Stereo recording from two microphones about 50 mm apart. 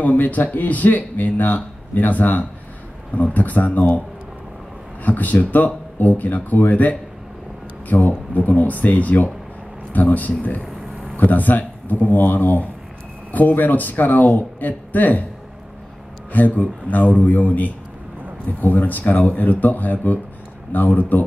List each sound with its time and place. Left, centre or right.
0.0 s speech: left
5.0 s speech: left
16.3 s a man's voice: left